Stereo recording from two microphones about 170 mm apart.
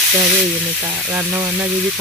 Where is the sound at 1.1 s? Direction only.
15° right (ahead or behind).